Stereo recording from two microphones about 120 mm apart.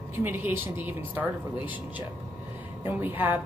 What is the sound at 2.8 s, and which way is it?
Speech, 15° right (ahead or behind).